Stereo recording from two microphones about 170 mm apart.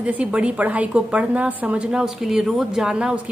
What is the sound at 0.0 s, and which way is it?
A woman's voice, 5° right (ahead or behind).